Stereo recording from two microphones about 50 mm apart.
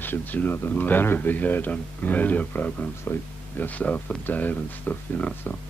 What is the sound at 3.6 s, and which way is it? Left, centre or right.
Speech, left.